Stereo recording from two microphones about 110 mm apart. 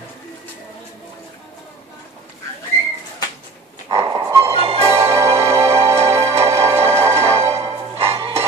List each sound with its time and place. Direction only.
3.9 s dog: 45° right (ahead or behind)
4.4 s music: 60° right (ahead or behind)